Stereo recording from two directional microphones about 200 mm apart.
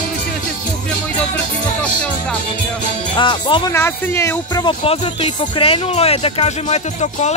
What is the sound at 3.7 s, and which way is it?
Speech, 10° left (ahead or behind).